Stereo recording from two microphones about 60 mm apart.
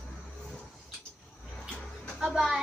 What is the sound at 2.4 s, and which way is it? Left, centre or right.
Speech, centre.